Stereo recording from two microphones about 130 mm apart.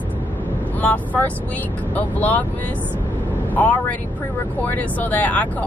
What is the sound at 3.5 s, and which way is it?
Speech, 10° left (ahead or behind).